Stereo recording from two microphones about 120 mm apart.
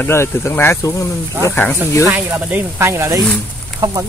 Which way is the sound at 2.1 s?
20° right (ahead or behind).